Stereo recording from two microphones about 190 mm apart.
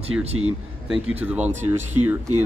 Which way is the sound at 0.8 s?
5° right (ahead or behind).